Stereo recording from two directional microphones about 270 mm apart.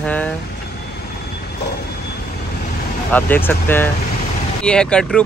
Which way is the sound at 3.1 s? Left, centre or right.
Centre.